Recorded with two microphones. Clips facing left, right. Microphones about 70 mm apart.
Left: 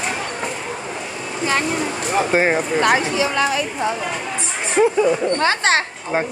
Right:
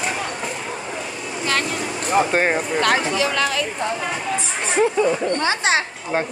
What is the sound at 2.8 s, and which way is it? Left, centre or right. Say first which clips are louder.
Speech: left 1 dB; centre.